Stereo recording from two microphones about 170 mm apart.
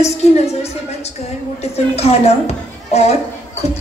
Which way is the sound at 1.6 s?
40° left (ahead or behind).